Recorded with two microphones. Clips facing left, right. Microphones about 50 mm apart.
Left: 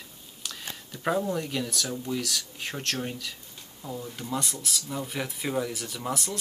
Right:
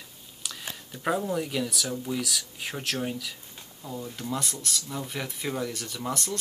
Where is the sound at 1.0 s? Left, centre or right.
Centre.